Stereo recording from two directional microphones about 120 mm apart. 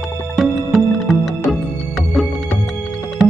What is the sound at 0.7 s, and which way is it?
Music, centre (ahead or behind).